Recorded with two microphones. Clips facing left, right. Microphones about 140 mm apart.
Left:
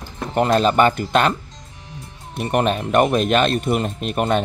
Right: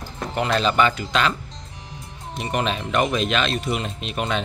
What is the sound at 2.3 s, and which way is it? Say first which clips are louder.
Speech: left 5 dB; 55° left (ahead or behind).